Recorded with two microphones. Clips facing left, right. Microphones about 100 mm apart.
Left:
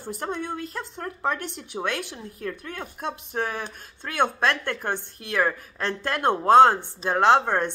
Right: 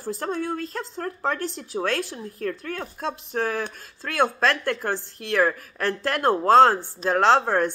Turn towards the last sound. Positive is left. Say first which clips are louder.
# even
turn(degrees=20)  # may be behind; listen again after turning